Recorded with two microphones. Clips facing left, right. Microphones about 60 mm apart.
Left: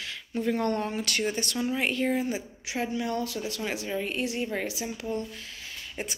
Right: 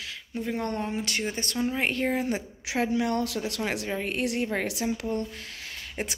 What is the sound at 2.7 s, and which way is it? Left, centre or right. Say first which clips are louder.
Speech: right 4 dB; right.